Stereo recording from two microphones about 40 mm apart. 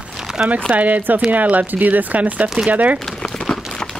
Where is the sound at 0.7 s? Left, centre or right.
Right.